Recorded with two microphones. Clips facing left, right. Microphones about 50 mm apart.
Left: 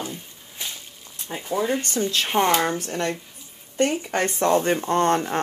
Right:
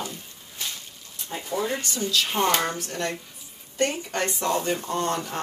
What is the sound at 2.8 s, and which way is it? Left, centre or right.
Speech, left.